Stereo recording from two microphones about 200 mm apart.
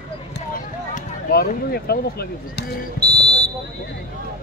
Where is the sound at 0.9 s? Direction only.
50° left (ahead or behind).